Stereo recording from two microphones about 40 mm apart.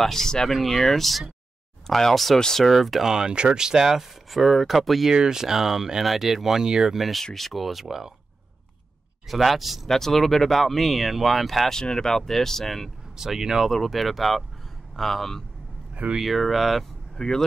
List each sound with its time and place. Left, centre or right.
0.0 s speech: centre
0.5 s speech: centre
3.1 s speech: centre
5.1 s speech: centre
7.0 s speech: centre
9.3 s speech: centre
9.8 s speech: centre
11.7 s speech: centre
13.1 s speech: centre
13.7 s speech: centre
15.9 s a sound: right
16.2 s speech: centre
17.2 s speech: centre